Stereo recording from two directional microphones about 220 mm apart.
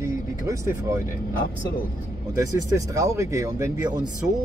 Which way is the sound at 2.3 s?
15° right (ahead or behind).